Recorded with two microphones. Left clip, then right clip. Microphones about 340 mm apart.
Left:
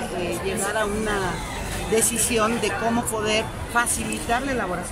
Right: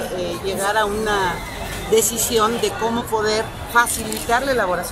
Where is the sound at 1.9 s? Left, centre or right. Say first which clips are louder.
Right 5 dB; centre.